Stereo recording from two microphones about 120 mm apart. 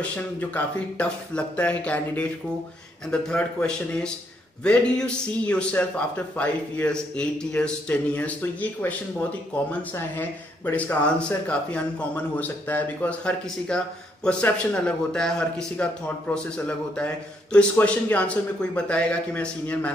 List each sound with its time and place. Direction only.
0.0 s speech: 15° left (ahead or behind)